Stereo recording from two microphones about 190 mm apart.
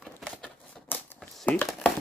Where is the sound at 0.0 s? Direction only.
Centre (ahead or behind).